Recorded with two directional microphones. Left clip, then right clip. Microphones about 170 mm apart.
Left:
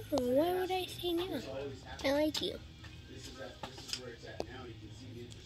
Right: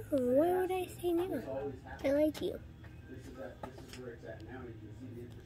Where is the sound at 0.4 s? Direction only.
5° right (ahead or behind).